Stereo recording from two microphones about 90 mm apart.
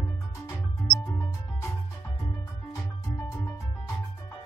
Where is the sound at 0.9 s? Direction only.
35° left (ahead or behind).